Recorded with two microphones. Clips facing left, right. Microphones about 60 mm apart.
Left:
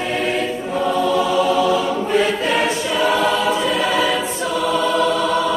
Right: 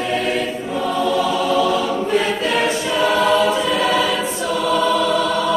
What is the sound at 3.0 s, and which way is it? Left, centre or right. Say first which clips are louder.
Choir: right 2 dB; centre.